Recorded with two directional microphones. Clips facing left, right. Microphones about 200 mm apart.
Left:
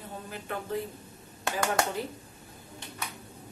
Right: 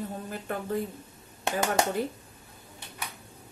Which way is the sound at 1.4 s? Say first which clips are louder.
Right 2 dB; 20° right (ahead or behind).